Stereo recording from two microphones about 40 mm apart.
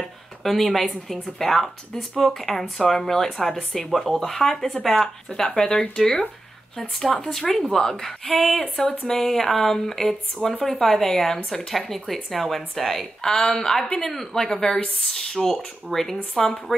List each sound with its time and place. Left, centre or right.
0.0 s speech: centre